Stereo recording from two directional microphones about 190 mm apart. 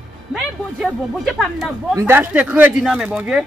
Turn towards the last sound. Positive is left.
turn(degrees=-5)  # may be behind; listen again after turning